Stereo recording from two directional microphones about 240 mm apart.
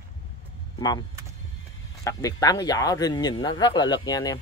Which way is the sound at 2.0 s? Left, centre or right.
Centre.